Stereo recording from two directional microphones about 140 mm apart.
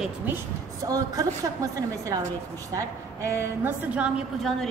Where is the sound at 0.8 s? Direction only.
25° right (ahead or behind).